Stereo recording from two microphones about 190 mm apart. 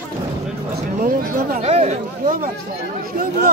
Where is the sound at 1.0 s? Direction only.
50° right (ahead or behind).